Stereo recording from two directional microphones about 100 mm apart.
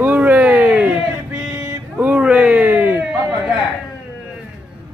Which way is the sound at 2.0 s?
15° right (ahead or behind).